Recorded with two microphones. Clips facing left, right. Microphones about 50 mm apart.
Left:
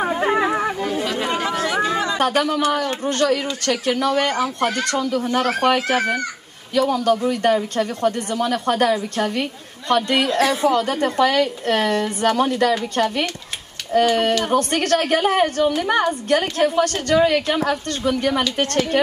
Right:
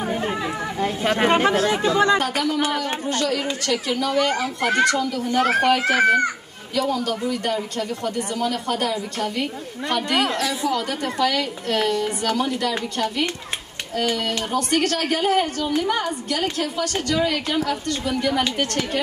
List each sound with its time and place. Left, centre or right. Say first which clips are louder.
0.2 s chatter: left 7 dB; left
1.0 s chatter: right 4 dB; right
1.6 s chatter: even; left
2.1 s a sound: left 3 dB; left
3.1 s a woman's voice: left 4 dB; left
4.6 s speech: right 4 dB; right
4.9 s a woman's voice: left 2 dB; left
5.8 s speech: right 3 dB; right
6.7 s a woman's voice: left 5 dB; left
10.0 s speech: left 2 dB; right
10.3 s a woman's voice: left 6 dB; left